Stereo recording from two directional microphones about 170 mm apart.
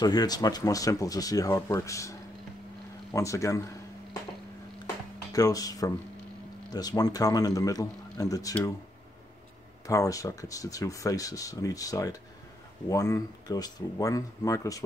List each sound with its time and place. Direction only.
0.0 s speech: 25° left (ahead or behind)
5.3 s speech: 20° left (ahead or behind)
9.8 s speech: 20° left (ahead or behind)